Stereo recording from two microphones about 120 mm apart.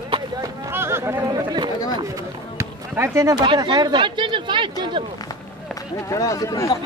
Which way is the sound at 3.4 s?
35° right (ahead or behind).